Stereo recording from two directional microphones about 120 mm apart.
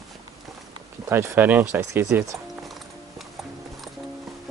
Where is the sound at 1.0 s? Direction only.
20° right (ahead or behind).